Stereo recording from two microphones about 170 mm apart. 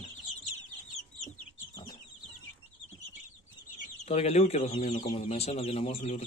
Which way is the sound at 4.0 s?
40° left (ahead or behind).